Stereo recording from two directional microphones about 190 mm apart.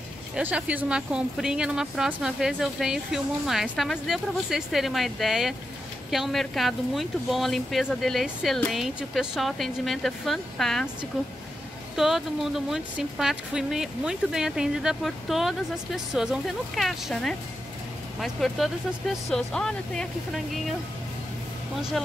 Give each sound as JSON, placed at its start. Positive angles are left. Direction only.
{"t": 0.4, "sound": "speech", "side_deg": -5}
{"t": 12.0, "sound": "speech", "side_deg": 0}